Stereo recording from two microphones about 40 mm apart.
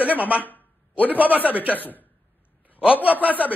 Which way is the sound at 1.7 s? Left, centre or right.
Left.